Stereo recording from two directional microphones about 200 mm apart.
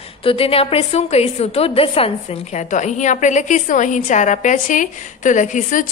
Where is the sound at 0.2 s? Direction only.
25° left (ahead or behind).